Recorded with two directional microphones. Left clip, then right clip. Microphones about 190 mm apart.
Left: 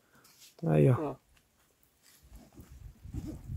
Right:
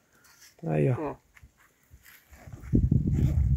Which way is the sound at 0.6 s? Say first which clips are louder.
Left 1 dB; 15° left (ahead or behind).